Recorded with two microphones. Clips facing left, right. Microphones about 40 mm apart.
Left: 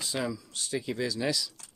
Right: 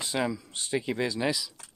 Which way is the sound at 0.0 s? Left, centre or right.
Right.